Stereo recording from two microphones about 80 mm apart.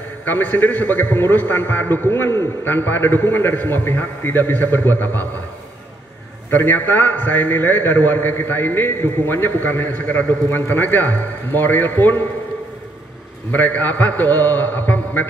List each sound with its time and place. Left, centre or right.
0.2 s a man's voice: left
6.5 s a man's voice: left
13.5 s a man's voice: left